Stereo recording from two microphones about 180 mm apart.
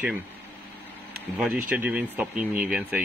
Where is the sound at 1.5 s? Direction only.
10° right (ahead or behind).